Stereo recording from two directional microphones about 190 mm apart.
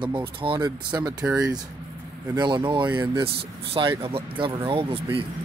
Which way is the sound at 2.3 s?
25° right (ahead or behind).